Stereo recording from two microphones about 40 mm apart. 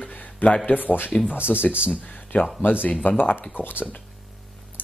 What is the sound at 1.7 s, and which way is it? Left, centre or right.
Speech, right.